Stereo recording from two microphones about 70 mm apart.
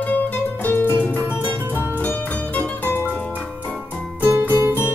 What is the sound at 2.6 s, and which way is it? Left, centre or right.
Music, left.